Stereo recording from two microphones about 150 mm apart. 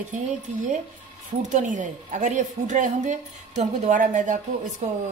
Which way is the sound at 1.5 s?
55° right (ahead or behind).